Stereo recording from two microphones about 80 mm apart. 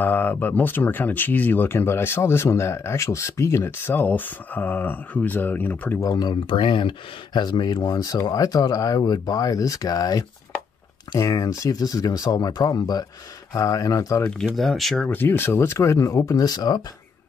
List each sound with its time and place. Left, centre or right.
0.0 s speech: left
5.9 s speech: left
6.5 s speech: left
13.5 s speech: left
14.4 s speech: centre
15.0 s speech: left